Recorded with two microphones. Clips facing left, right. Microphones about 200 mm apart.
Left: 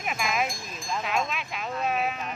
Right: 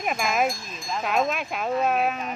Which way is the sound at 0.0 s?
45° right (ahead or behind).